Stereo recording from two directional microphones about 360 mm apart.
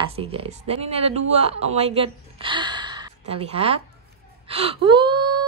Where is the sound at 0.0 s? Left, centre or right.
Centre.